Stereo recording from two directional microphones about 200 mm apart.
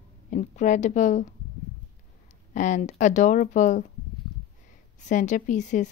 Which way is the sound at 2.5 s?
40° left (ahead or behind).